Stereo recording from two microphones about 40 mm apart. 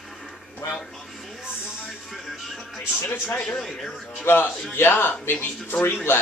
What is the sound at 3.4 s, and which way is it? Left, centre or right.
Speech, centre.